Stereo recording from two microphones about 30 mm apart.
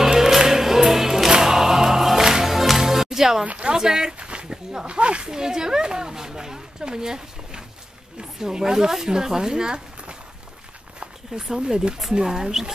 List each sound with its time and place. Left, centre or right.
0.0 s music: centre
1.4 s choir: centre
2.1 s music: centre
3.7 s speech: right
4.2 s a sound: right
4.8 s speech: right
5.3 s speech: right
11.3 s speech: right
12.3 s speech: centre